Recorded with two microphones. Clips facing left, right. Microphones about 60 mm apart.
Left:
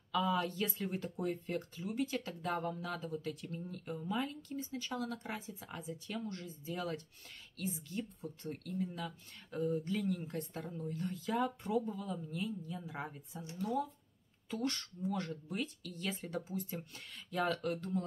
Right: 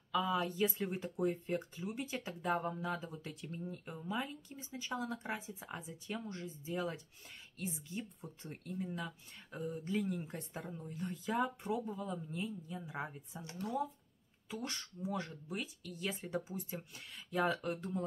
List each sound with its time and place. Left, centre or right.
0.1 s speech: centre
10.9 s speech: centre
14.5 s speech: centre
17.5 s speech: centre